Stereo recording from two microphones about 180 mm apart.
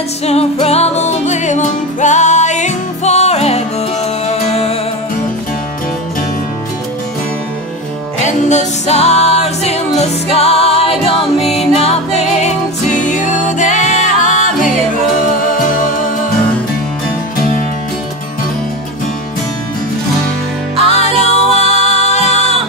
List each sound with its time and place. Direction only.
0.2 s music: 35° left (ahead or behind)
8.5 s music: 40° left (ahead or behind)
21.2 s music: 40° left (ahead or behind)